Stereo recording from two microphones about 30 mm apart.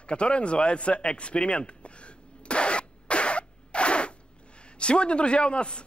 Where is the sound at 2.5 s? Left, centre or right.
Left.